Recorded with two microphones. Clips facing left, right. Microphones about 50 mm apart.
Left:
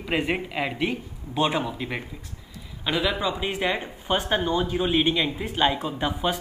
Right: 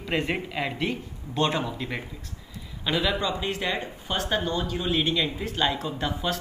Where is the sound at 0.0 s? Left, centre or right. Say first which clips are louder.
Left 2 dB; centre.